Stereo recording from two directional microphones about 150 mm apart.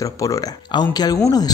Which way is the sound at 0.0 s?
25° left (ahead or behind).